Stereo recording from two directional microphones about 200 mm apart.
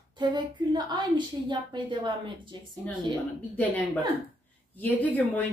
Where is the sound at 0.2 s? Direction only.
20° right (ahead or behind).